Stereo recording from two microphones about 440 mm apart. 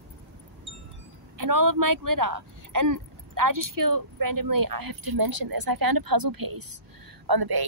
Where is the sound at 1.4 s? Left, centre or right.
Right.